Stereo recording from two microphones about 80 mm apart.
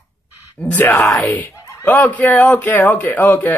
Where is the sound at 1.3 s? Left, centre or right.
Left.